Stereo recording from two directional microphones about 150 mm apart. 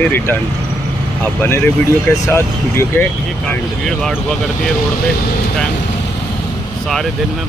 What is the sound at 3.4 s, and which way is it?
Speech, 5° left (ahead or behind).